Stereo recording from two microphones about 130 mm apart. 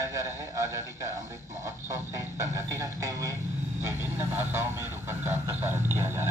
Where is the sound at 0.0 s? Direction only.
20° right (ahead or behind).